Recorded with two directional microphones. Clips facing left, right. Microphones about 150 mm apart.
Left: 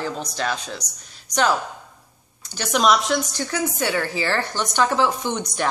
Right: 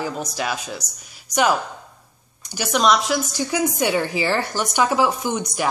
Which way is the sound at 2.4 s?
10° right (ahead or behind).